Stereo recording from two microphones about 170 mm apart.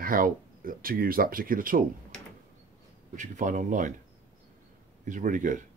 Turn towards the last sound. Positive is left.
turn(degrees=-50)  # may be behind; listen again after turning